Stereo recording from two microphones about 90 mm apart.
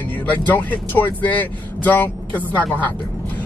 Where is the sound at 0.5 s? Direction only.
20° left (ahead or behind).